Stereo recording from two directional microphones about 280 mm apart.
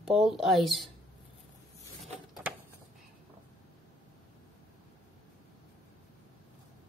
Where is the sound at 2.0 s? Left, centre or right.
Centre.